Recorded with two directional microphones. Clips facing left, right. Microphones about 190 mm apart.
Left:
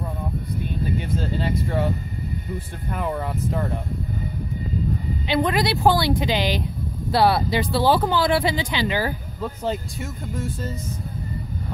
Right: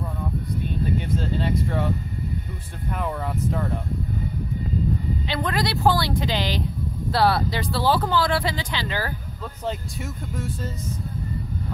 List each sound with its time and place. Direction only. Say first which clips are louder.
1.4 s speech: left 3 dB; 5° left (ahead or behind)
3.0 s speech: left 1 dB; 5° left (ahead or behind)
5.2 s speech: left 7 dB; 15° left (ahead or behind)